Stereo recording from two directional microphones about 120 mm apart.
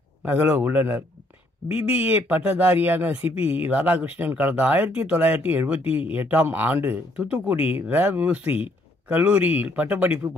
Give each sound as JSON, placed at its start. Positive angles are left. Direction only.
{"t": 0.2, "sound": "speech", "side_deg": -15}